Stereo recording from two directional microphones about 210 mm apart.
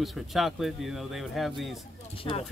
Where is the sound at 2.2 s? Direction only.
25° left (ahead or behind).